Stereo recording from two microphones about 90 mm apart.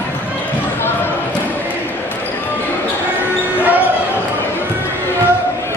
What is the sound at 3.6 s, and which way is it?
Basketball bounce, 20° right (ahead or behind).